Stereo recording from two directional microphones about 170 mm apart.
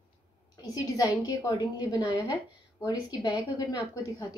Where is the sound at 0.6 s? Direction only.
20° left (ahead or behind).